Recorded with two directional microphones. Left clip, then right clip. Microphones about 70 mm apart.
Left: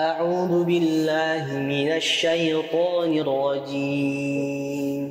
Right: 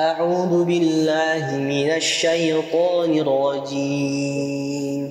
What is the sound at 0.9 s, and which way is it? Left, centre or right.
Mantra, right.